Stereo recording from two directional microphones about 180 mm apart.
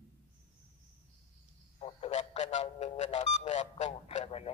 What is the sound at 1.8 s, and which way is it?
Radio, 35° left (ahead or behind).